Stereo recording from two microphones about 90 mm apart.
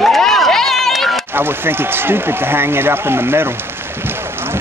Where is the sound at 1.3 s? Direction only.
25° right (ahead or behind).